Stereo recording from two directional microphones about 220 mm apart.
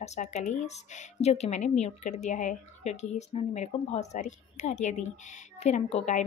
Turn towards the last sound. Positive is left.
turn(degrees=30)  # may be behind; listen again after turning